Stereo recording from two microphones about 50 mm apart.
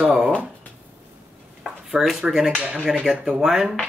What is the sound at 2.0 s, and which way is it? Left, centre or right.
Speech, right.